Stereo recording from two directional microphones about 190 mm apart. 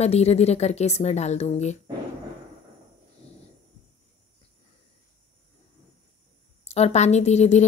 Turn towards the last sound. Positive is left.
turn(degrees=35)  # may be behind; listen again after turning